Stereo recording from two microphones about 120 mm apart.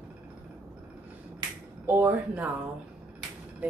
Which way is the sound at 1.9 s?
15° right (ahead or behind).